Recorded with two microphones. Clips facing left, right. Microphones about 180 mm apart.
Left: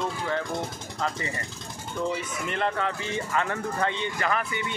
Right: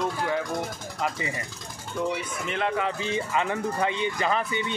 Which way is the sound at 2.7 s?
15° right (ahead or behind).